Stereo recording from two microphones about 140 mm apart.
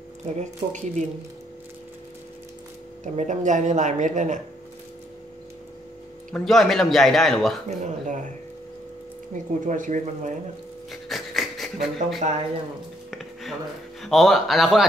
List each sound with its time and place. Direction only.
0.4 s speech: 60° right (ahead or behind)
3.0 s speech: 65° right (ahead or behind)
6.3 s a man's voice: centre (ahead or behind)
7.6 s speech: 60° right (ahead or behind)
9.3 s speech: 65° right (ahead or behind)
10.9 s a sound: centre (ahead or behind)
14.0 s a man's voice: centre (ahead or behind)